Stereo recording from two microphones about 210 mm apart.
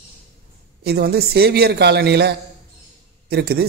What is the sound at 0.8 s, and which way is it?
Speech, 50° right (ahead or behind).